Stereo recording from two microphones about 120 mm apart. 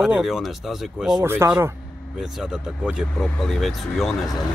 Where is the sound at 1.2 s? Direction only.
20° right (ahead or behind).